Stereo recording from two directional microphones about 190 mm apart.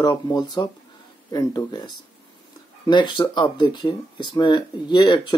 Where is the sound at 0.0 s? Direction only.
20° left (ahead or behind).